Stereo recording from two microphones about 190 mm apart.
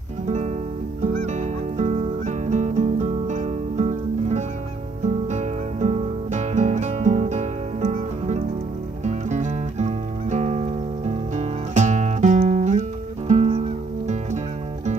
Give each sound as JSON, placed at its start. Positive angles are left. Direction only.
{"t": 0.3, "sound": "music", "side_deg": -35}